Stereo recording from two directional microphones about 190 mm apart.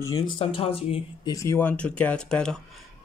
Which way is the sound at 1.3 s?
15° left (ahead or behind).